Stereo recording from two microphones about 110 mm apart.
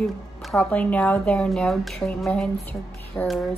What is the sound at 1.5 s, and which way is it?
Speech, centre (ahead or behind).